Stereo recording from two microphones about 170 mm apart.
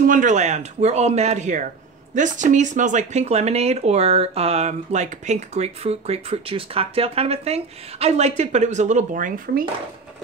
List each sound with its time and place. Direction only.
0.0 s speech: 50° right (ahead or behind)